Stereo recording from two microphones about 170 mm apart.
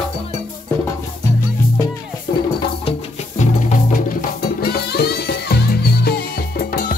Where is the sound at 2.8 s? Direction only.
40° left (ahead or behind).